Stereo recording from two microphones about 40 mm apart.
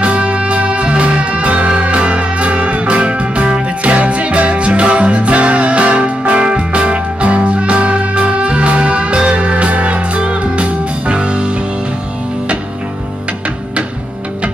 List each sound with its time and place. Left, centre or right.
0.0 s music: right